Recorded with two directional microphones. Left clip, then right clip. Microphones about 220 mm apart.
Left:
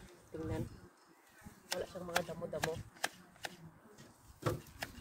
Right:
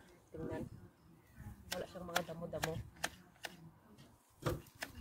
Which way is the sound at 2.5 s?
5° left (ahead or behind).